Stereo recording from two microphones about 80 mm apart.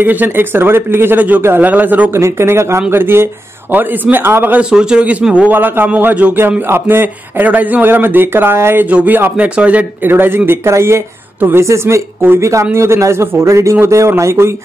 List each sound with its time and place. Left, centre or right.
0.0 s speech: right
2.1 s speech: right
4.6 s a man's voice: centre; by 8.8 s right
8.8 s speech: centre